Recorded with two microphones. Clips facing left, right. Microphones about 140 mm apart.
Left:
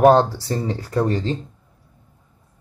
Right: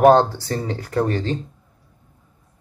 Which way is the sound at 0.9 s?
10° left (ahead or behind).